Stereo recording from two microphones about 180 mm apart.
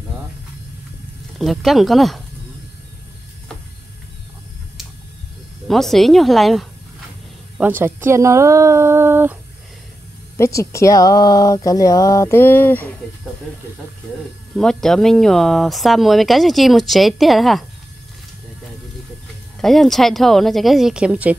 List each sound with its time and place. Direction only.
1.4 s speech: centre (ahead or behind)
5.7 s speech: centre (ahead or behind)
7.5 s speech: 10° right (ahead or behind)
10.3 s speech: 15° left (ahead or behind)
14.5 s speech: 5° left (ahead or behind)
19.6 s speech: centre (ahead or behind)